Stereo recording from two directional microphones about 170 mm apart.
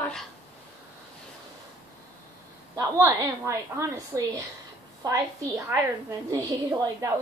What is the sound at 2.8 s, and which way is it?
A woman's voice, 15° right (ahead or behind).